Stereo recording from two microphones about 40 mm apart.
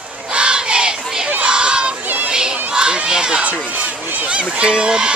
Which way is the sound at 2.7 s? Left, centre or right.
Right.